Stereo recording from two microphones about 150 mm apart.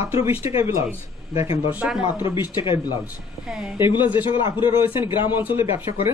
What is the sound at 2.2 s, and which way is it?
Speech, 30° left (ahead or behind).